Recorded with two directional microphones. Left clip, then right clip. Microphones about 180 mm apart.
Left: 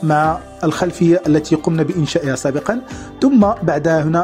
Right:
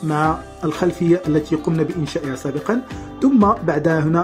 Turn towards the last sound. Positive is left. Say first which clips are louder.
# left 3 dB
turn(degrees=40)  # may be behind; listen again after turning